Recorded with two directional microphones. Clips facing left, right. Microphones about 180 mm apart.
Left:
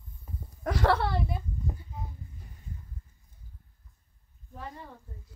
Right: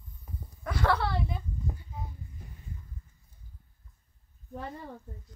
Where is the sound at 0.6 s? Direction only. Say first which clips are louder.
Left 3 dB; 45° left (ahead or behind).